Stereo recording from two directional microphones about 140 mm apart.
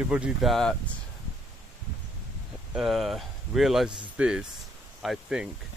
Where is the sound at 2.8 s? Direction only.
Centre (ahead or behind).